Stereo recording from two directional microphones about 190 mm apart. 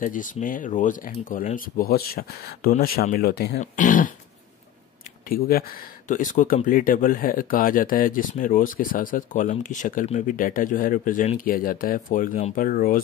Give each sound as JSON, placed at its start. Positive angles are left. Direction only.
{"t": 0.0, "sound": "speech", "side_deg": 45}
{"t": 5.3, "sound": "speech", "side_deg": 50}